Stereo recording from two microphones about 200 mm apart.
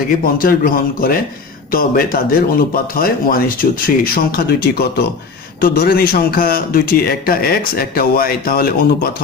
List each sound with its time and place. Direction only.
0.2 s a man's voice: 45° left (ahead or behind)